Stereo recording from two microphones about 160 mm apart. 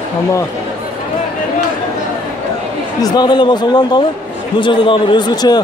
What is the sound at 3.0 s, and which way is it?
A man's voice, 25° left (ahead or behind).